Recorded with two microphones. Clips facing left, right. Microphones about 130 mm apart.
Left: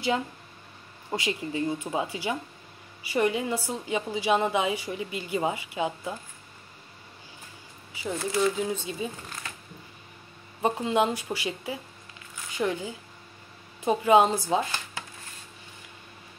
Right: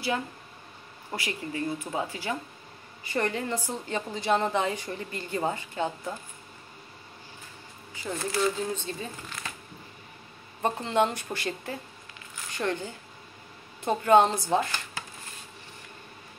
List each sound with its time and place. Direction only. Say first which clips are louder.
1.1 s a woman's voice: left 4 dB; 20° left (ahead or behind)
7.9 s a woman's voice: left 2 dB; 5° left (ahead or behind)
10.6 s a woman's voice: left 1 dB; 10° left (ahead or behind)